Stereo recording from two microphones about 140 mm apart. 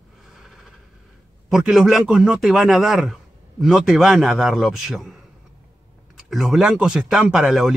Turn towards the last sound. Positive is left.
turn(degrees=0)  # may be behind; listen again after turning